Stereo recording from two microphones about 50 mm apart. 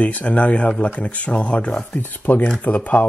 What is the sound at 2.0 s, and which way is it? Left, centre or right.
Speech, left.